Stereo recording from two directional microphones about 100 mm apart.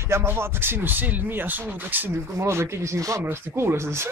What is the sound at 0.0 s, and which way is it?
Speech, 25° right (ahead or behind).